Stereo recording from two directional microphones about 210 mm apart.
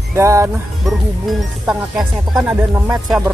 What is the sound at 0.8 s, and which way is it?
Speech, centre (ahead or behind).